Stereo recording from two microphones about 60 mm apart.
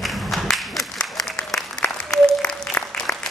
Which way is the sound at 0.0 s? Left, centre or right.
Centre.